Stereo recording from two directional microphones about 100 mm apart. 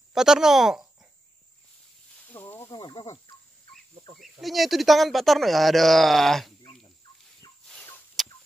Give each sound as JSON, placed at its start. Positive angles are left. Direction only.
{"t": 0.1, "sound": "speech", "side_deg": -5}
{"t": 2.2, "sound": "snake", "side_deg": 20}
{"t": 4.2, "sound": "speech", "side_deg": 0}
{"t": 8.2, "sound": "chicken", "side_deg": 0}